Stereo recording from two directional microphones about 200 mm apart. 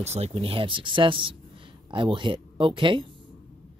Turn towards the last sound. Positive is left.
turn(degrees=-25)  # may be behind; listen again after turning